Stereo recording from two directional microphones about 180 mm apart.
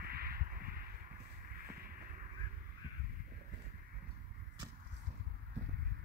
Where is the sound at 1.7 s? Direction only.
55° right (ahead or behind).